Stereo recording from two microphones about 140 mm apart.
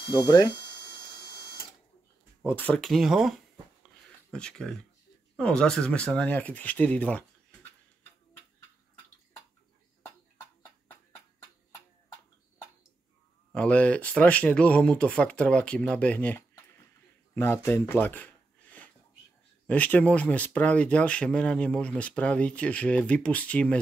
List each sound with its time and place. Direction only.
0.0 s a sound: 30° left (ahead or behind)
2.4 s speech: 10° left (ahead or behind)
2.8 s speech: centre (ahead or behind)
13.5 s speech: 10° left (ahead or behind)